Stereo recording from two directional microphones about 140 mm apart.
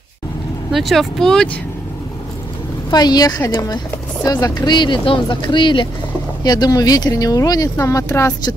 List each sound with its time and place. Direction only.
0.7 s speech: centre (ahead or behind)
2.9 s speech: 30° left (ahead or behind)